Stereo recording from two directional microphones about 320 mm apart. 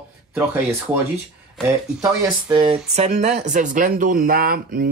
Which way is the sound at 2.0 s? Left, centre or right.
Centre.